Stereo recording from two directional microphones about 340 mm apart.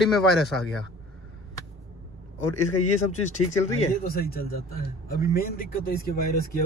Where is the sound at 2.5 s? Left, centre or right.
Left.